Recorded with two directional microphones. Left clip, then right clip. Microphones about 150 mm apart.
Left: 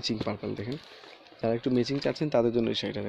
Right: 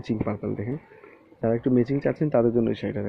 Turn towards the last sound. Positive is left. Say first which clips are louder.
# right 3 dB
turn(degrees=25)  # may be behind; listen again after turning